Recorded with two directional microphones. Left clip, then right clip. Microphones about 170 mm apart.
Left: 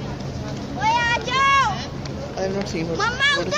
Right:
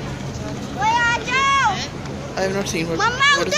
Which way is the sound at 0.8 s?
55° left (ahead or behind).